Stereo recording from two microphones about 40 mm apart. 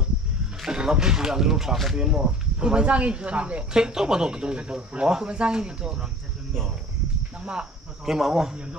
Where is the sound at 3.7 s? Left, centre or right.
Centre.